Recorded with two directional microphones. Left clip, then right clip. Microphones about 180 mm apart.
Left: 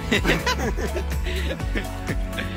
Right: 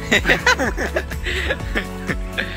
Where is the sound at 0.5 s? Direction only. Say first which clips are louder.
Right 6 dB; 25° right (ahead or behind).